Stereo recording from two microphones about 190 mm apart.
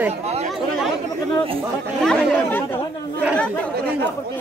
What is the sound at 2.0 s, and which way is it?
Speech, 10° left (ahead or behind).